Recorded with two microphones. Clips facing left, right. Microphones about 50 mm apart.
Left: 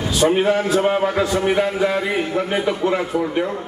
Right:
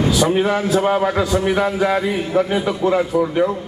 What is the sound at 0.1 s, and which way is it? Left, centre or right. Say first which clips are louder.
A man's voice: even; left.